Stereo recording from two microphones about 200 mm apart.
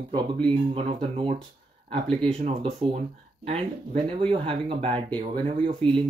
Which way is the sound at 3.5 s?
25° right (ahead or behind).